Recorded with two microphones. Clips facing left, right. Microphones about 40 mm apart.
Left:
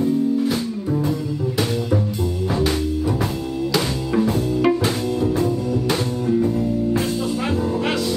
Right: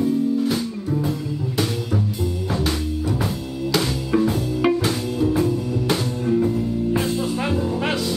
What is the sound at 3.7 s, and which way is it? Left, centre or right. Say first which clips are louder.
Music: right 1 dB; centre.